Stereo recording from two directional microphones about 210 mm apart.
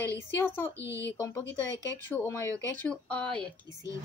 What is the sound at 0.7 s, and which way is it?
Speech, 15° right (ahead or behind).